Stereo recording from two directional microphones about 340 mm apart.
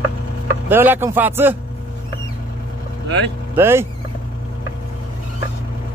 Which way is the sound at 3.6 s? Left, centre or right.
Centre.